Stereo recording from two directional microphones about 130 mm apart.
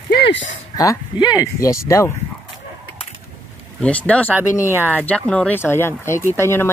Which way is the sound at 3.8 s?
10° left (ahead or behind).